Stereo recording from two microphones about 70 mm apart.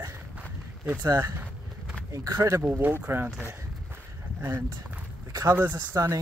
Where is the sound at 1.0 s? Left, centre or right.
Right.